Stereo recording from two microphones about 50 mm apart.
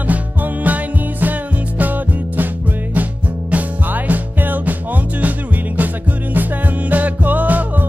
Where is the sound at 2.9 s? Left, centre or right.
Right.